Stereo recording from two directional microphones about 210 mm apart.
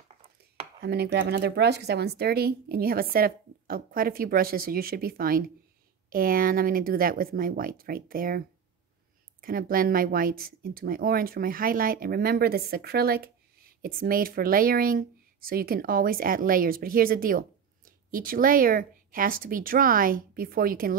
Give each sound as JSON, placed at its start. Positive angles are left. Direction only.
{"t": 0.7, "sound": "speech", "side_deg": -50}